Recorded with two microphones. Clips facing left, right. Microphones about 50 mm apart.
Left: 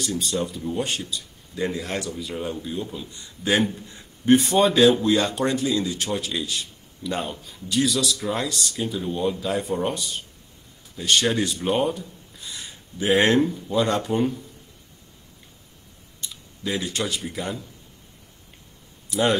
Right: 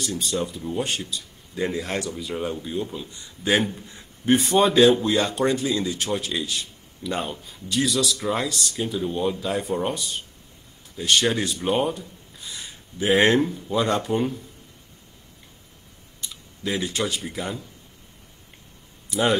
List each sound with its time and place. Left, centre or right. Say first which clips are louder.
0.0 s speech: left 1 dB; centre
11.0 s speech: even; centre
16.2 s speech: even; centre
19.0 s speech: left 1 dB; centre